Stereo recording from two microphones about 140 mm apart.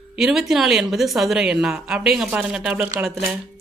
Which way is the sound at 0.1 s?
5° right (ahead or behind).